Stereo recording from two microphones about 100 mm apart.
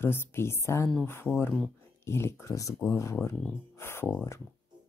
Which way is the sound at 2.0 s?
25° left (ahead or behind).